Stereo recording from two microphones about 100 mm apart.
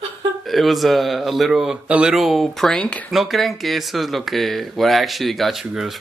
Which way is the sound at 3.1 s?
Centre (ahead or behind).